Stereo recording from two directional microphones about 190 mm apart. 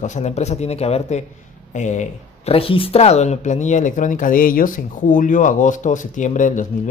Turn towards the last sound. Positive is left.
turn(degrees=40)  # may be behind; listen again after turning